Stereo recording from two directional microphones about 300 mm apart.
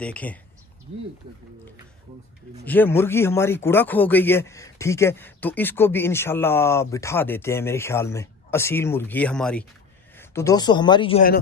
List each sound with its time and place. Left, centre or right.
0.0 s speech: centre
2.6 s speech: centre